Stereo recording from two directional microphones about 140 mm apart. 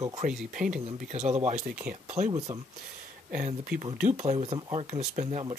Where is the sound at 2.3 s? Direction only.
30° right (ahead or behind).